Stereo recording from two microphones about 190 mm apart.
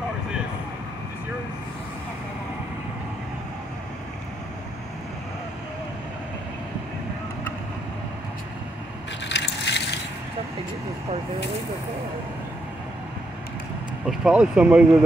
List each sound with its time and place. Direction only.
9.3 s crushing: 65° left (ahead or behind)
14.0 s speech: 5° right (ahead or behind)